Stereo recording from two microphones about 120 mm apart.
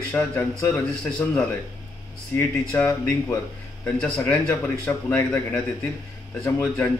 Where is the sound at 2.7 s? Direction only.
15° left (ahead or behind).